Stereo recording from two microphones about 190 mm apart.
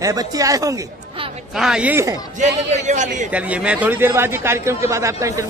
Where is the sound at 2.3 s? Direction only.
40° right (ahead or behind).